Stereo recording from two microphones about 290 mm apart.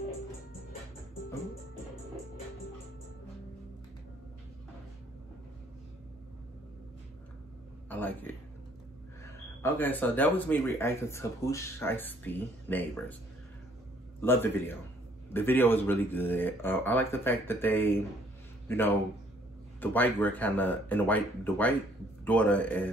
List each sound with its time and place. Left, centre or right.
7.9 s speech: centre
9.6 s speech: centre
14.2 s a man's voice: centre